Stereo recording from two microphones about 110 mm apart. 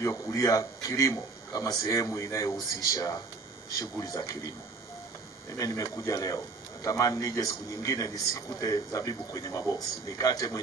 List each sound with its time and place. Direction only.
0.0 s a man's voice: 30° left (ahead or behind)
5.6 s a man's voice: 30° left (ahead or behind)